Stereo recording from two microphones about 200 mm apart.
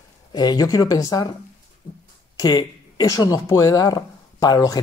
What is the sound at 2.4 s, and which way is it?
Speech, 20° left (ahead or behind).